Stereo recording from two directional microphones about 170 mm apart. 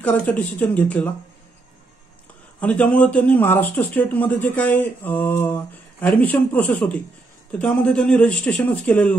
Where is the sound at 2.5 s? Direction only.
10° left (ahead or behind).